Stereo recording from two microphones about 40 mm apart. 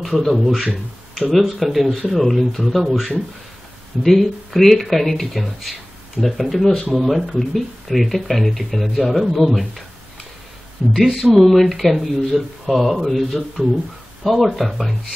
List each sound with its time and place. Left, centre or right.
0.0 s speech: centre
10.8 s speech: centre
11.3 s speech: centre
13.6 s speech: centre
14.2 s speech: centre